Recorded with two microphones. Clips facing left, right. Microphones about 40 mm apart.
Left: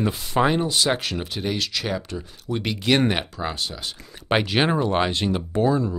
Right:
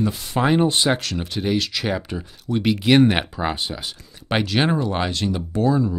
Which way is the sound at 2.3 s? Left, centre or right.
Centre.